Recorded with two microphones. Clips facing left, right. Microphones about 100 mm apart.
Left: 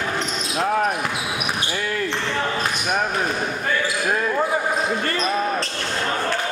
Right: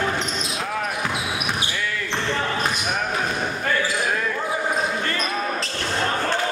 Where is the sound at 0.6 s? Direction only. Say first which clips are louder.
Left 9 dB; 40° left (ahead or behind).